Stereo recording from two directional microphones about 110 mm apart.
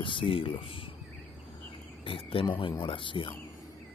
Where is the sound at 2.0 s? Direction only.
55° left (ahead or behind).